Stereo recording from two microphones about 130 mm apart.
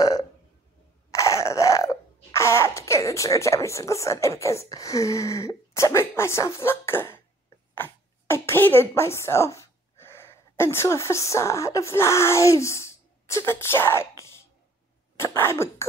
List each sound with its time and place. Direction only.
0.0 s burping: 30° left (ahead or behind)
1.1 s a sound: 25° left (ahead or behind)
7.7 s speech: 15° left (ahead or behind)
15.1 s throat clearing: 20° left (ahead or behind)